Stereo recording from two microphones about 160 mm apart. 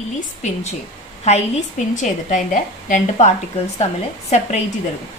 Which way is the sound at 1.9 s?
50° left (ahead or behind).